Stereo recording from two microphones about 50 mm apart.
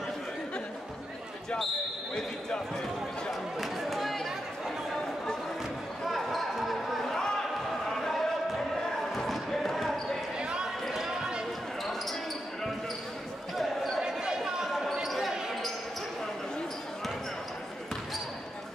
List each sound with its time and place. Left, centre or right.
3.3 s chatter: centre
6.0 s basketball bounce: centre
7.1 s a sound: centre
9.1 s basketball bounce: centre
10.4 s a sound: centre
10.9 s basketball bounce: centre
13.6 s basketball bounce: centre
14.0 s basketball bounce: centre